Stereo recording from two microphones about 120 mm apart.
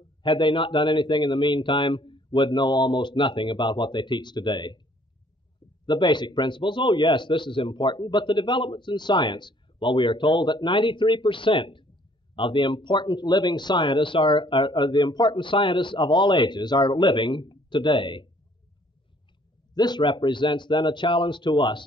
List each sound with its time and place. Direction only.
0.2 s speech: 40° left (ahead or behind)
5.9 s speech: 40° left (ahead or behind)
19.7 s speech: 35° left (ahead or behind)